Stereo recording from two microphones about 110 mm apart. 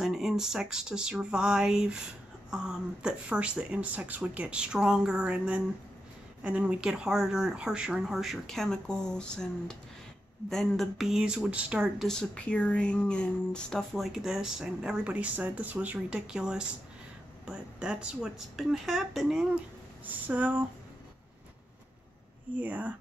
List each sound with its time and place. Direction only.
0.0 s speech: 5° right (ahead or behind)
12.0 s speech: 5° left (ahead or behind)
20.1 s speech: 15° right (ahead or behind)
22.6 s speech: 15° right (ahead or behind)